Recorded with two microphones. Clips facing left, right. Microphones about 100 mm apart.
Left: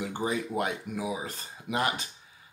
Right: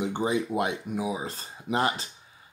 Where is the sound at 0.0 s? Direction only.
20° right (ahead or behind).